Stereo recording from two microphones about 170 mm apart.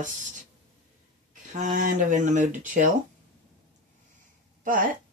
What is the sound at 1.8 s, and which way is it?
Speech, 50° right (ahead or behind).